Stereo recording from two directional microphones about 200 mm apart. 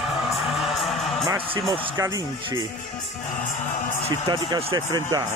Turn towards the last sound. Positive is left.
turn(degrees=-20)  # may be behind; listen again after turning